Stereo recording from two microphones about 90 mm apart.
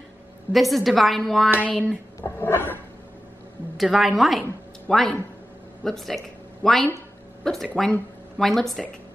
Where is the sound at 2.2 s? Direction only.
30° left (ahead or behind).